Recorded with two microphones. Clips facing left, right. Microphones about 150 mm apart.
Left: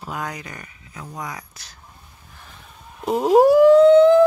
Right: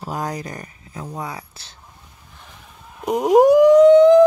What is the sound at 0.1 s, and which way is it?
Speech, 35° right (ahead or behind).